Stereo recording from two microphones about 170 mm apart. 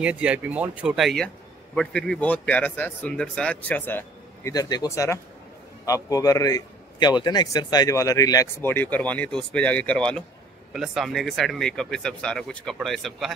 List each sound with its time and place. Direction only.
0.0 s a man's voice: 5° right (ahead or behind); by 4.0 s 10° left (ahead or behind)
4.5 s a man's voice: 20° left (ahead or behind); by 13.3 s centre (ahead or behind)